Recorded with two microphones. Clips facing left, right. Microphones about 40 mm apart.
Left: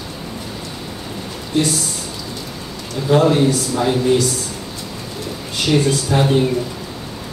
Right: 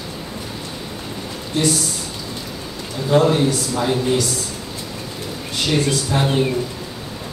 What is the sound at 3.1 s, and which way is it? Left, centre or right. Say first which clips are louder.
A man's voice: left 2 dB; centre.